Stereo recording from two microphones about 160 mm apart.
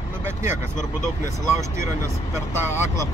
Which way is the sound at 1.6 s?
20° right (ahead or behind).